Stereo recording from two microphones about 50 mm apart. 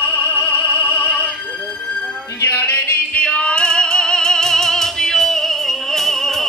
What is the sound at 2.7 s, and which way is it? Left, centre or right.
Music, left.